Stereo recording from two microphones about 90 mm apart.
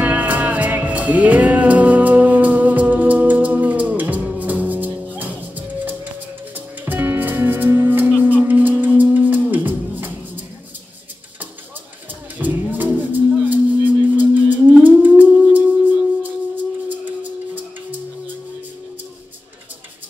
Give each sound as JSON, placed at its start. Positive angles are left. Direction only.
{"t": 0.0, "sound": "music", "side_deg": -20}
{"t": 6.5, "sound": "music", "side_deg": -20}
{"t": 12.4, "sound": "music", "side_deg": -20}
{"t": 14.8, "sound": "howl", "side_deg": -20}
{"t": 16.2, "sound": "music", "side_deg": -20}